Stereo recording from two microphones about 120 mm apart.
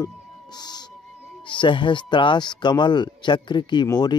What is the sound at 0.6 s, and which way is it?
Speech, 35° left (ahead or behind).